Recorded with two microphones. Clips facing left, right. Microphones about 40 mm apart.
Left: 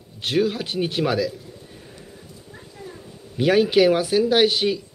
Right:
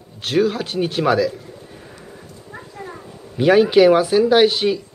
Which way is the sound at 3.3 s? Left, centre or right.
Centre.